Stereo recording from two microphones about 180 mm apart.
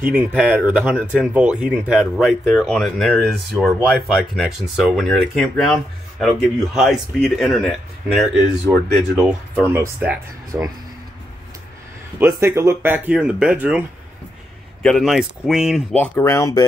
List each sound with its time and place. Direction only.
0.0 s speech: 10° right (ahead or behind)
9.7 s speech: 10° right (ahead or behind)
12.2 s speech: 15° right (ahead or behind)
14.8 s speech: centre (ahead or behind)
15.9 s speech: 10° left (ahead or behind)